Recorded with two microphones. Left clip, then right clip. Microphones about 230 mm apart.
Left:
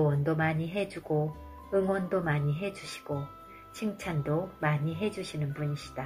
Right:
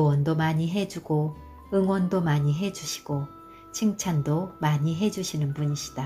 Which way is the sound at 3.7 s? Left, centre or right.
Right.